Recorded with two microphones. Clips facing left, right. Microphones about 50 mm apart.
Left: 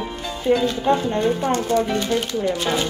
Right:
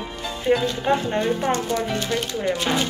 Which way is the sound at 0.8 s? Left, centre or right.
Right.